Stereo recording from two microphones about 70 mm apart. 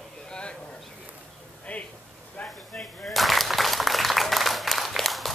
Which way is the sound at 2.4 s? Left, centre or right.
Centre.